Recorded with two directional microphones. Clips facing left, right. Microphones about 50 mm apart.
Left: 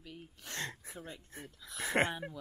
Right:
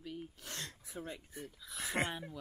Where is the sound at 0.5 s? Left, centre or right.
Left.